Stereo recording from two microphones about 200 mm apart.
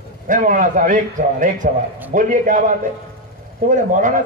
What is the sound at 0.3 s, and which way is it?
A man's voice, 40° right (ahead or behind).